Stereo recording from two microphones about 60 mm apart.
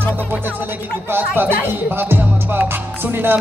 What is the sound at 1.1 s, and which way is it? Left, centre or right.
Music, right.